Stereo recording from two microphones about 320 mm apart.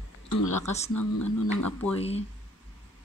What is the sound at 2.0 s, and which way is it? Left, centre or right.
Speech, centre.